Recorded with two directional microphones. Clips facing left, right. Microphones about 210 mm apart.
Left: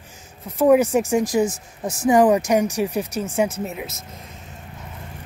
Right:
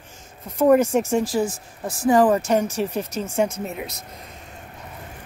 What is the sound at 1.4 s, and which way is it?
Speech, 45° left (ahead or behind).